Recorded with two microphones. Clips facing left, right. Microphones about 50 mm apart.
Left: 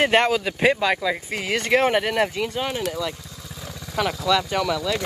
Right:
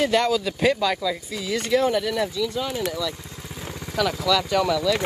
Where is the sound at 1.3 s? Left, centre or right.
Left.